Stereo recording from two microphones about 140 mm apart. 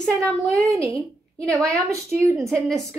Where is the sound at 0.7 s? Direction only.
20° right (ahead or behind).